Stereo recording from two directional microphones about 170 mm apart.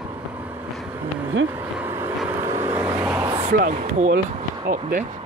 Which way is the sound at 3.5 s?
50° right (ahead or behind).